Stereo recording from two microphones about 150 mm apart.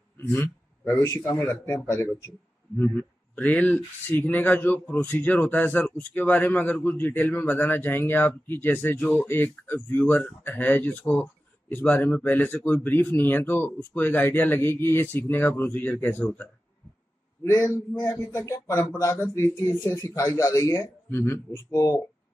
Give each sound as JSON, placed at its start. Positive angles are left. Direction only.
{"t": 0.2, "sound": "a man's voice", "side_deg": 15}
{"t": 2.8, "sound": "a man's voice", "side_deg": 10}